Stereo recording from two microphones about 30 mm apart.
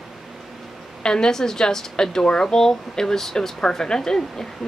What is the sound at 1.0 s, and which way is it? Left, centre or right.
A woman's voice, left.